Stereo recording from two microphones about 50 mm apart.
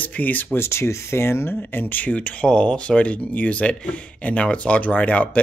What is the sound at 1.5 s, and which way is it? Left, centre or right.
Speech, left.